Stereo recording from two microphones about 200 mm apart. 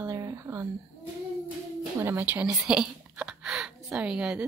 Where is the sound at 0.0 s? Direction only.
15° right (ahead or behind).